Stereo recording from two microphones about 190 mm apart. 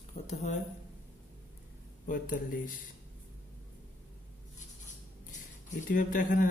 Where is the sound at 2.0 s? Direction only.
45° left (ahead or behind).